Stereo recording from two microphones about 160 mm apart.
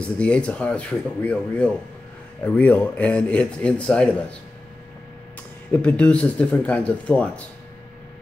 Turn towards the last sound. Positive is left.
turn(degrees=10)  # may be behind; listen again after turning